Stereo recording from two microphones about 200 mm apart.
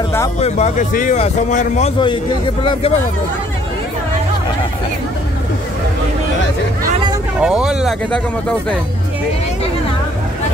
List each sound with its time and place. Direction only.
0.4 s speech: 35° left (ahead or behind)
2.6 s speech: 25° left (ahead or behind)
7.3 s speech: 5° right (ahead or behind)